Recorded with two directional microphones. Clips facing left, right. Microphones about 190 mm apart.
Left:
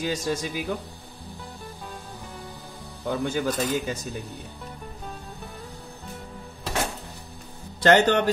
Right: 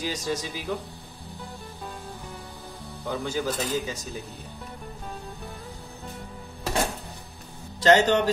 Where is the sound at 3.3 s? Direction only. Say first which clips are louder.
Left 2 dB; 55° left (ahead or behind).